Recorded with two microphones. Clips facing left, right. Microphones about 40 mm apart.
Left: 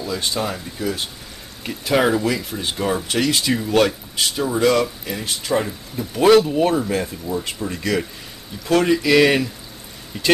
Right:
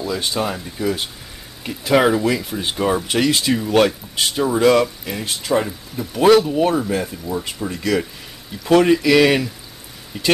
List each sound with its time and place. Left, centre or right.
0.0 s speech: centre
3.4 s speech: centre
7.5 s speech: centre
8.6 s speech: right
9.0 s speech: centre